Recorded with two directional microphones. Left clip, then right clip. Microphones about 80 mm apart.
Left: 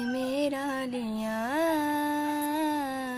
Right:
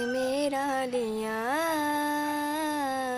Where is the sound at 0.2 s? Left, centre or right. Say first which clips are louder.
Even; right.